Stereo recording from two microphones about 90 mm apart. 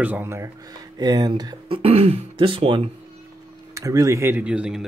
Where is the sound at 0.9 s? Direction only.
50° right (ahead or behind).